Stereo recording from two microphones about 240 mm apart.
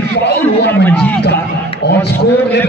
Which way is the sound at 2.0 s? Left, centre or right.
Left.